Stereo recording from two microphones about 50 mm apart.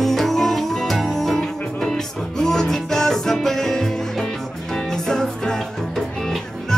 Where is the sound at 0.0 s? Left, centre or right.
Centre.